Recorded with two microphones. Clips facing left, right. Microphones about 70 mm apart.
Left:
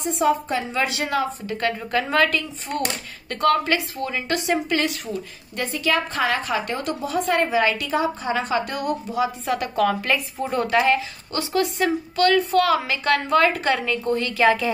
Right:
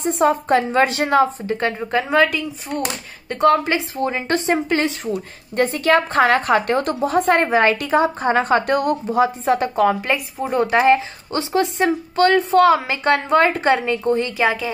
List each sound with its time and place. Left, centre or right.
0.0 s a woman's voice: right
5.6 s a woman's voice: right
9.4 s a woman's voice: right